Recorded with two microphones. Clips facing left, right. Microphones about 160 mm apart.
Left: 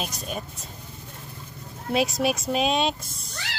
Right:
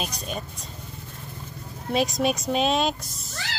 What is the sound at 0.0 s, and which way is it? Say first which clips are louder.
Speech: even; centre (ahead or behind).